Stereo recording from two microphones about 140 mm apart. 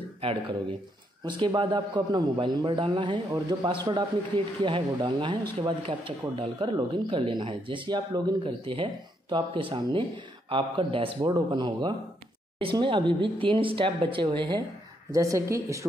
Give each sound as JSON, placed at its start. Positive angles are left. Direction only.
{"t": 0.2, "sound": "a man's voice", "side_deg": -40}